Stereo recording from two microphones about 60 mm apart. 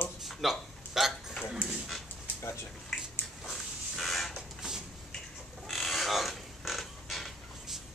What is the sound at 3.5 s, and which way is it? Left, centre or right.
Dog, centre.